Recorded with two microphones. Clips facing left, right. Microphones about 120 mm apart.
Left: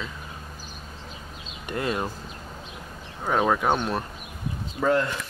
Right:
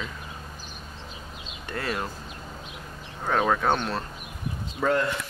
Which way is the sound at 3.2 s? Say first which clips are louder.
Left 1 dB; 10° left (ahead or behind).